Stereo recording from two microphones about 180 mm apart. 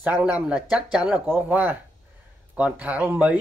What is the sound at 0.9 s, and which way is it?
Speech, 5° right (ahead or behind).